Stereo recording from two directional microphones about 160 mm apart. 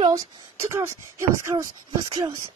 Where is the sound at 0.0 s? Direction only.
20° right (ahead or behind).